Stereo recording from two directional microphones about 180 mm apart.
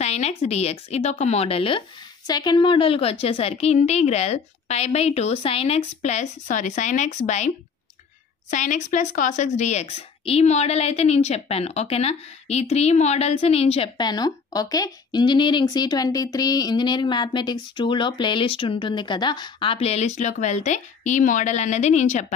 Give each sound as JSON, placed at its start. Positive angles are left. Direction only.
{"t": 0.0, "sound": "a woman's voice", "side_deg": 35}